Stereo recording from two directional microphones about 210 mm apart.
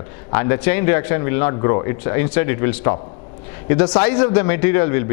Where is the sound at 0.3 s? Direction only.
10° left (ahead or behind).